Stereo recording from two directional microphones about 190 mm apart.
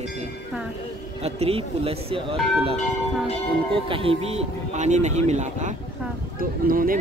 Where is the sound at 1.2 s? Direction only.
30° right (ahead or behind).